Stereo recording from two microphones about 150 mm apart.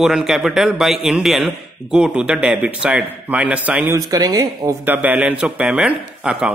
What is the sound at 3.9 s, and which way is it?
Speech, 25° right (ahead or behind).